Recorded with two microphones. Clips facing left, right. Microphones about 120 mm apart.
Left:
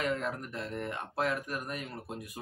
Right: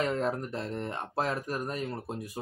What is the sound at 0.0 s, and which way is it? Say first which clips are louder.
Speech: right 4 dB; 35° right (ahead or behind).